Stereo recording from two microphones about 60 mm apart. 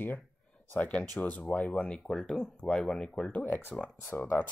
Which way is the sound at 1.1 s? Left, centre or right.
Left.